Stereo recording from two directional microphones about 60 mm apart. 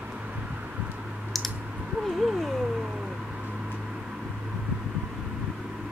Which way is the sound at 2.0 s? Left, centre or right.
Centre.